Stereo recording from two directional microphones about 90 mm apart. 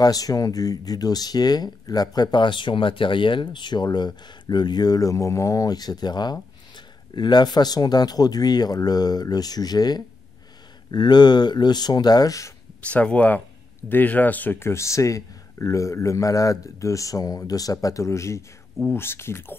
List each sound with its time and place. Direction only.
0.0 s speech: 45° left (ahead or behind)
12.8 s speech: 15° left (ahead or behind)